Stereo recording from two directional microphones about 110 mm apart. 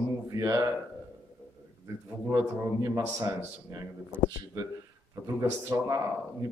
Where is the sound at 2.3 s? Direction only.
30° right (ahead or behind).